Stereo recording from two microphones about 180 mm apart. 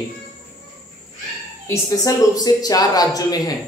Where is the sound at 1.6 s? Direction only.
15° left (ahead or behind).